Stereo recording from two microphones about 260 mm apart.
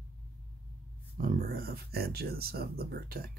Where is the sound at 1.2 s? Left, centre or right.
Right.